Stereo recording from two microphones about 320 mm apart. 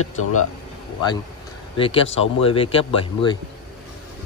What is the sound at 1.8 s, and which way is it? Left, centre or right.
Speech, centre.